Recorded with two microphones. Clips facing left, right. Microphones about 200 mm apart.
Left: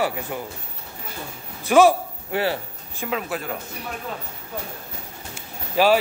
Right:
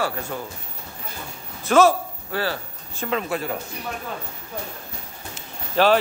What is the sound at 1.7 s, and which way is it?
Speech, 15° left (ahead or behind).